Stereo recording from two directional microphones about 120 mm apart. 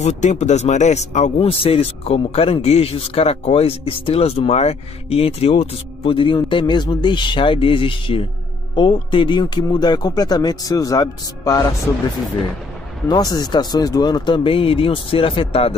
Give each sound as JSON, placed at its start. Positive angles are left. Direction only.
{"t": 0.0, "sound": "speech", "side_deg": 75}
{"t": 1.4, "sound": "speech", "side_deg": 50}
{"t": 13.1, "sound": "speech", "side_deg": 35}